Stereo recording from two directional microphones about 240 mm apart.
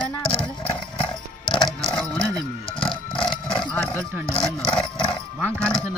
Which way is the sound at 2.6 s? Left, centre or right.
Left.